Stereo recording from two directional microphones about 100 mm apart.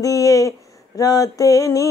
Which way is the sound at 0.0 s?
35° left (ahead or behind).